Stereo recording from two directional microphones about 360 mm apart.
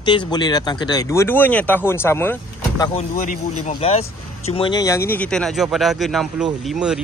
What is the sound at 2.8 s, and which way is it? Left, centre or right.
Speech, centre.